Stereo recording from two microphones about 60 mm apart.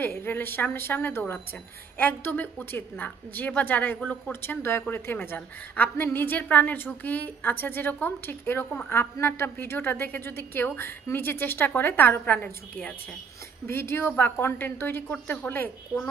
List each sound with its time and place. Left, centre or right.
0.0 s a woman's voice: left
4.3 s a woman's voice: left
13.7 s a woman's voice: left
15.0 s a woman's voice: left
15.4 s a woman's voice: left
15.9 s a child's voice: centre